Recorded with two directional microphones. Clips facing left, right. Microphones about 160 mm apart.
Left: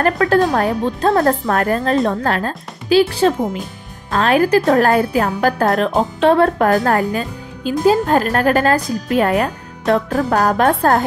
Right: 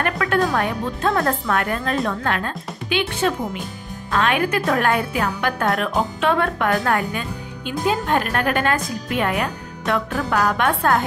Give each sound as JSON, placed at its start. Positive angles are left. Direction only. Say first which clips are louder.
{"t": 0.0, "sound": "a woman's voice", "louder": "left 6 dB", "side_deg": 35}